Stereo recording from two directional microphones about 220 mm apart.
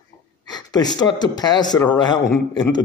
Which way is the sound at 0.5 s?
20° left (ahead or behind).